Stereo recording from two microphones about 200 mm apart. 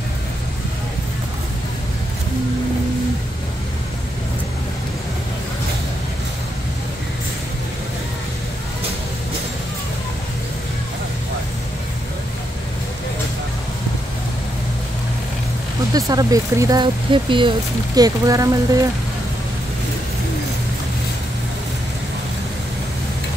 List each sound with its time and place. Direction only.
15.9 s speech: 20° right (ahead or behind)